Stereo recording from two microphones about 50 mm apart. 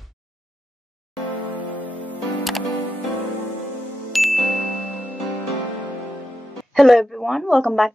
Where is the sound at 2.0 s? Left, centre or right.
Left.